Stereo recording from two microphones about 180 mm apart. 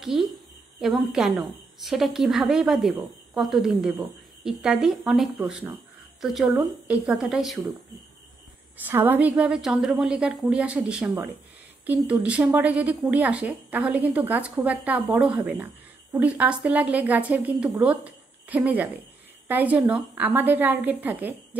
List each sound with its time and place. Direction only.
0.0 s a woman's voice: centre (ahead or behind)
8.8 s a woman's voice: 10° right (ahead or behind)